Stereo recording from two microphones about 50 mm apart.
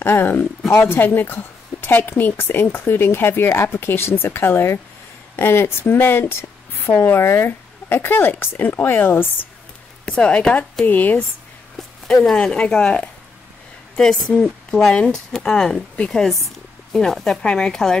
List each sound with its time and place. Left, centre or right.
0.0 s speech: left
0.8 s a woman's voice: left
10.0 s speech: left
12.4 s a woman's voice: left